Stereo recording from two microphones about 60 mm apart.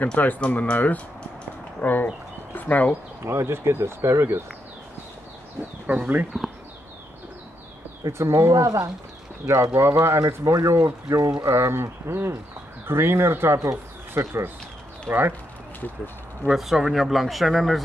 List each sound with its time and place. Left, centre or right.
0.0 s speech: left
3.3 s speech: right
5.9 s speech: right
8.1 s speech: right
9.8 s speech: right
16.5 s speech: centre